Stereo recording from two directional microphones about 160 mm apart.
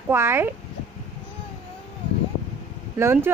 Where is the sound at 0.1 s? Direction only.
15° right (ahead or behind).